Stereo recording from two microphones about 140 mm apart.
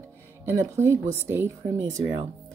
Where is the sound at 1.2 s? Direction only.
15° right (ahead or behind).